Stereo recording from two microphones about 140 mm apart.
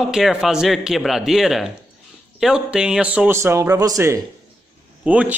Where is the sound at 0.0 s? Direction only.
Centre (ahead or behind); by 4.2 s 25° right (ahead or behind).